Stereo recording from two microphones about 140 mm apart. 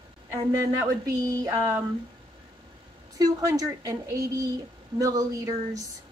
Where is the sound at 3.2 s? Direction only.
25° right (ahead or behind).